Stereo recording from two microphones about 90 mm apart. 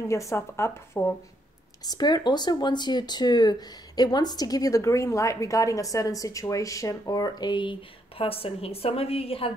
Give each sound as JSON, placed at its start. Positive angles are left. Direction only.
{"t": 0.1, "sound": "speech", "side_deg": 35}
{"t": 1.9, "sound": "speech", "side_deg": 50}
{"t": 8.2, "sound": "a woman's voice", "side_deg": 90}